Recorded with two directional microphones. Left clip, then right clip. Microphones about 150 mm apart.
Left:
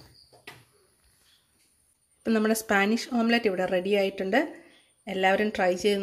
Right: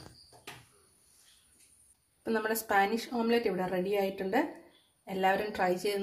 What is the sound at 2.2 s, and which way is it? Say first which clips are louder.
A woman's voice: left 6 dB; 50° left (ahead or behind).